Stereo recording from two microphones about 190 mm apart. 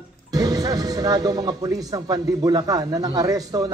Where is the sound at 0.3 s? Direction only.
20° right (ahead or behind).